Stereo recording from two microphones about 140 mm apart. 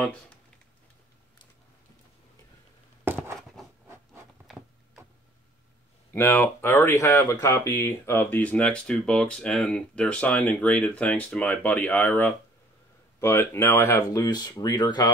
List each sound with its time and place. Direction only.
0.0 s speech: 10° left (ahead or behind)
6.1 s speech: 15° left (ahead or behind); by 15.0 s 30° left (ahead or behind)